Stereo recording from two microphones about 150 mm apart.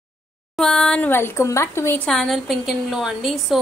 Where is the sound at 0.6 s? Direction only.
5° left (ahead or behind).